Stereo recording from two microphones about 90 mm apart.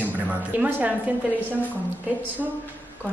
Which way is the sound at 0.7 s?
20° right (ahead or behind).